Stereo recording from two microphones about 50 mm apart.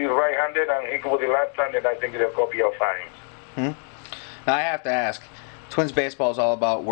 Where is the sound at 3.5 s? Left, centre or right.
Centre.